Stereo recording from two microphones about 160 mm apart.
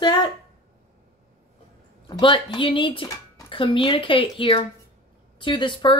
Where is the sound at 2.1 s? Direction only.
30° left (ahead or behind).